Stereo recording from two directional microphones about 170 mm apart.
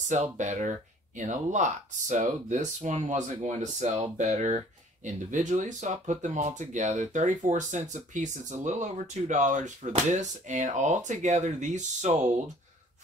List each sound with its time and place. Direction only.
0.1 s speech: 45° right (ahead or behind)